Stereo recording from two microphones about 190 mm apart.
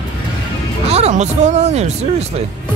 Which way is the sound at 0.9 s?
35° right (ahead or behind).